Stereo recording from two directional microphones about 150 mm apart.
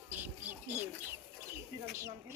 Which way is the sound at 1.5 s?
20° right (ahead or behind).